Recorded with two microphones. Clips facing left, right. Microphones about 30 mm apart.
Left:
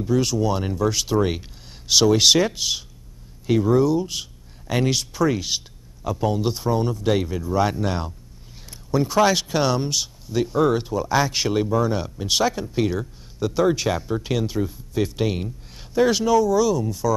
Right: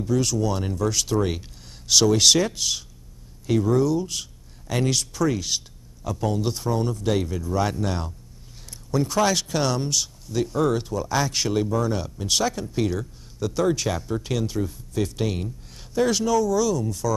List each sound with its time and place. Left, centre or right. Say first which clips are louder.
0.0 s speech: left 2 dB; centre